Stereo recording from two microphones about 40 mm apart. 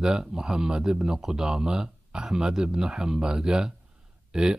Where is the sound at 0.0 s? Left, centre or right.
Centre.